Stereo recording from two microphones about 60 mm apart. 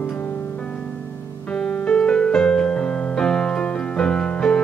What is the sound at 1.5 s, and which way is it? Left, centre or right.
Music, centre.